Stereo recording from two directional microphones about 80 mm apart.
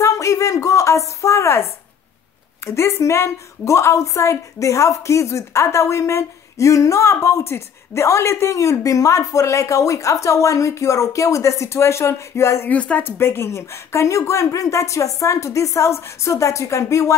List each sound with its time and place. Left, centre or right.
0.0 s a woman's voice: left
12.6 s speech: centre
13.0 s a woman's voice: left